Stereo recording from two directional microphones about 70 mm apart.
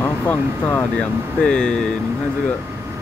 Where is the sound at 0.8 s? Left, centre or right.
Centre.